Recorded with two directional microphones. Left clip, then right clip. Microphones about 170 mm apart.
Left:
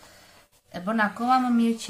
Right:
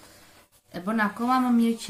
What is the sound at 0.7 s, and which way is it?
Speech, 15° left (ahead or behind).